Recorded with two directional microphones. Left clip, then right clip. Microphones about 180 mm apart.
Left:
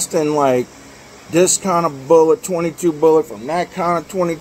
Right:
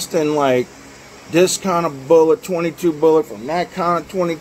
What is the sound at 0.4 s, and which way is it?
A man's voice, 20° left (ahead or behind).